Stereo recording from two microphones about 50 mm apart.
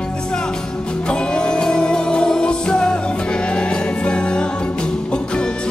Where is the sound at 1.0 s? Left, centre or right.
Centre.